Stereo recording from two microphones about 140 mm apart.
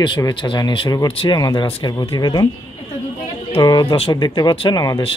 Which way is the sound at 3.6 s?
30° left (ahead or behind).